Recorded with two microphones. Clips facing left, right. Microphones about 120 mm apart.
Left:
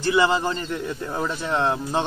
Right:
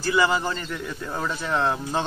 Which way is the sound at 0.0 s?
20° left (ahead or behind).